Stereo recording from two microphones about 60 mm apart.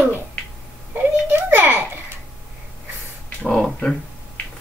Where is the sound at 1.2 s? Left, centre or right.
Right.